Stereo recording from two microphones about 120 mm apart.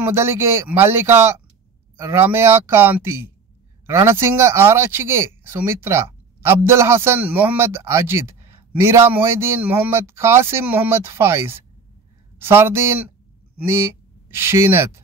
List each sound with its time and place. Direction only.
0.0 s speech: 20° right (ahead or behind)